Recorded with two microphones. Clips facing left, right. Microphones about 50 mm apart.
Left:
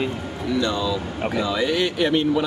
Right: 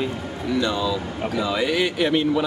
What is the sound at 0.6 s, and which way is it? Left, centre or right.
A man's voice, centre.